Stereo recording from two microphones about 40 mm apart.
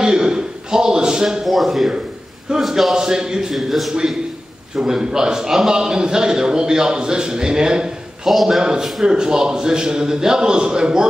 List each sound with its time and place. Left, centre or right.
0.0 s a sound: centre
1.4 s speech: centre
2.5 s a man's voice: right
3.5 s speech: centre
4.7 s a man's voice: centre
8.3 s a man's voice: centre